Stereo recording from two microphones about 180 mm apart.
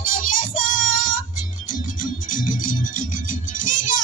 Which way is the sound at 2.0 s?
50° left (ahead or behind).